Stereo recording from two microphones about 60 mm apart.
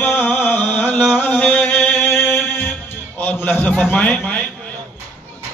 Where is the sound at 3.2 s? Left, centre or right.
Left.